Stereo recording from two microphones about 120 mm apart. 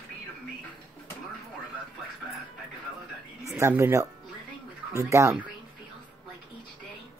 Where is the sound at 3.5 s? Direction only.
20° right (ahead or behind).